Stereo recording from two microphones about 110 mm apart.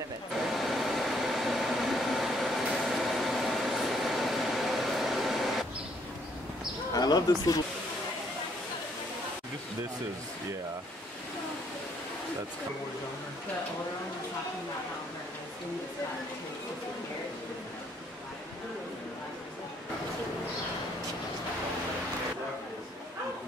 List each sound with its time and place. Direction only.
0.5 s vehicle: centre (ahead or behind)
6.9 s speech: 35° left (ahead or behind)